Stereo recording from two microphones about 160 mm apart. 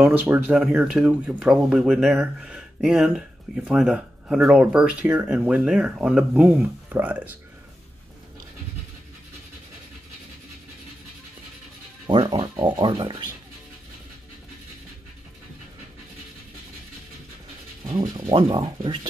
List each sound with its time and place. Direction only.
0.0 s speech: 10° right (ahead or behind)
12.1 s speech: 30° right (ahead or behind)
17.8 s speech: 45° right (ahead or behind)
18.1 s speech: 30° right (ahead or behind)